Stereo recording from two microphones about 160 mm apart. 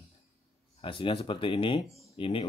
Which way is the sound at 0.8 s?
35° left (ahead or behind).